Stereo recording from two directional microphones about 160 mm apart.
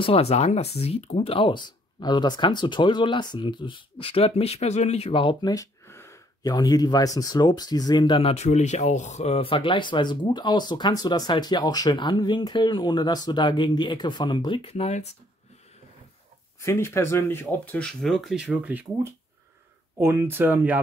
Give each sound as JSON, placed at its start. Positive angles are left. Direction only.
{"t": 0.0, "sound": "speech", "side_deg": 40}
{"t": 16.6, "sound": "speech", "side_deg": 15}
{"t": 20.0, "sound": "speech", "side_deg": -15}